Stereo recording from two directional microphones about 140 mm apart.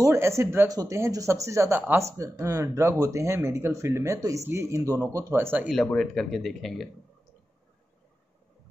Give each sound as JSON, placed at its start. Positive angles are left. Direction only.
{"t": 0.0, "sound": "speech", "side_deg": -20}
{"t": 5.9, "sound": "speech", "side_deg": 5}